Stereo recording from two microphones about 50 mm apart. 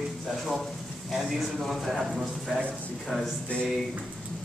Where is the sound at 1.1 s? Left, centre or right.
Centre.